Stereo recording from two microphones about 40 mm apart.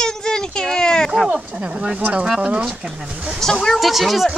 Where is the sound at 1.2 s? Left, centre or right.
Right.